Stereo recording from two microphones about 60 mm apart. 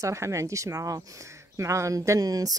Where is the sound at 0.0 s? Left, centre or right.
Right.